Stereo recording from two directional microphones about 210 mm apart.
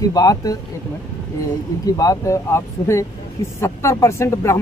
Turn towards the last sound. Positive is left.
turn(degrees=15)  # may be behind; listen again after turning